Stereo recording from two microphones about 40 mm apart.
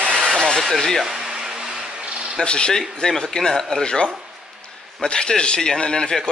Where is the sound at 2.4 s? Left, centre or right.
Left.